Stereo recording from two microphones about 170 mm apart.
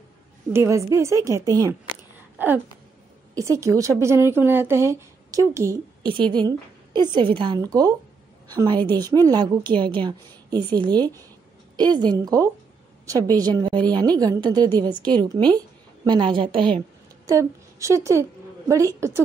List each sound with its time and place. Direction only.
0.5 s speech: 15° right (ahead or behind)
2.3 s a sound: 10° right (ahead or behind)
3.3 s a woman's voice: 20° right (ahead or behind)
17.3 s a woman's voice: 20° right (ahead or behind)